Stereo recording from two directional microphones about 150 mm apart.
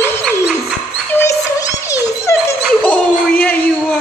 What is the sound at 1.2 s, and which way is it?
Music, 20° left (ahead or behind).